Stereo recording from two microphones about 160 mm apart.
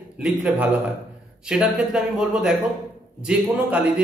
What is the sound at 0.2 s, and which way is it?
A man's voice, 5° right (ahead or behind).